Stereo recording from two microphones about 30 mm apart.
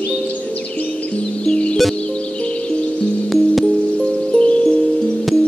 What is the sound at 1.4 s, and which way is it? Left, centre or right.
Music, left.